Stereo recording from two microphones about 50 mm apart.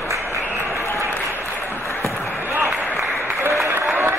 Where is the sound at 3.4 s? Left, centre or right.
Right.